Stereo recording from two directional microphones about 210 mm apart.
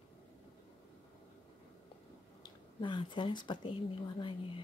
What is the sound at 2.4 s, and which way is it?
Speech, 25° left (ahead or behind).